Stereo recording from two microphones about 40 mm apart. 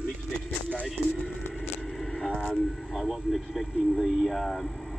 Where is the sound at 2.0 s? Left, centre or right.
Centre.